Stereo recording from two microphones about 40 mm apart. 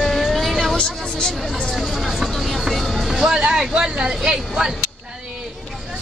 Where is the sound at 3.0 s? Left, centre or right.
Centre.